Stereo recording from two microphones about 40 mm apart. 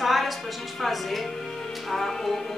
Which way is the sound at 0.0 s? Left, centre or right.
Centre.